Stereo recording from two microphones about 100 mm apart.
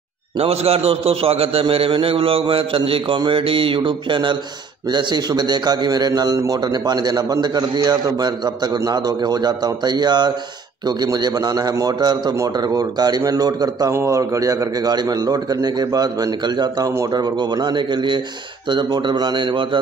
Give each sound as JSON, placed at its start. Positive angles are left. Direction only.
{"t": 0.4, "sound": "a man's voice", "side_deg": -90}